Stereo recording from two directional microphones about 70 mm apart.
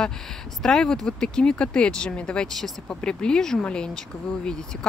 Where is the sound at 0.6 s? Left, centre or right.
Centre.